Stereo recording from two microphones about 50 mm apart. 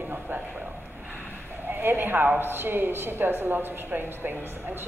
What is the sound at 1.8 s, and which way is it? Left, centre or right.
A woman's voice, right.